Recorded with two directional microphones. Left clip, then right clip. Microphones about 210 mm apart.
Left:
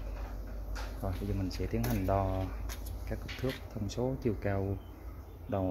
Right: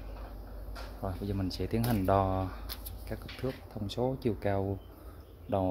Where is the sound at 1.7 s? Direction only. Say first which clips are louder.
Right 4 dB; 20° right (ahead or behind).